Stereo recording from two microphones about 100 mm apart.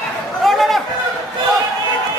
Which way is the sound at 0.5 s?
Centre (ahead or behind).